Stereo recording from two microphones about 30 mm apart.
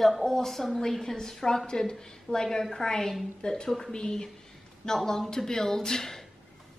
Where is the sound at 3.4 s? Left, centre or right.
Left.